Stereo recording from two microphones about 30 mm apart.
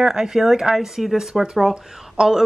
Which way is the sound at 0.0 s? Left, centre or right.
Centre.